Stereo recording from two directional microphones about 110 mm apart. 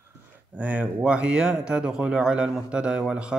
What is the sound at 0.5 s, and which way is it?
Speech, 15° right (ahead or behind).